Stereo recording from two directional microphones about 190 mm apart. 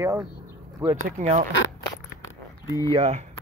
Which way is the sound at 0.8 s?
15° right (ahead or behind).